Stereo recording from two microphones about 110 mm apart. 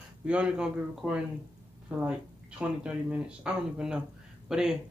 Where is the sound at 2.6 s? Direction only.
10° right (ahead or behind).